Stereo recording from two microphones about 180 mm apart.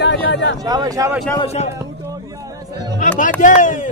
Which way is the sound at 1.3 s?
35° left (ahead or behind).